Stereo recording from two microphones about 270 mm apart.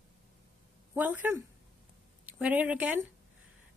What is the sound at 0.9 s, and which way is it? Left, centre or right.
Speech, centre.